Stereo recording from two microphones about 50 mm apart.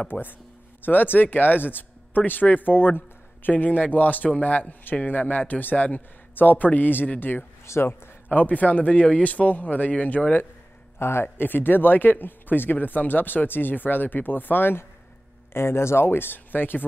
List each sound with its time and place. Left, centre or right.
0.0 s speech: left
7.6 s a man's voice: left
8.3 s speech: left
11.0 s a man's voice: left
11.4 s speech: left
15.5 s speech: left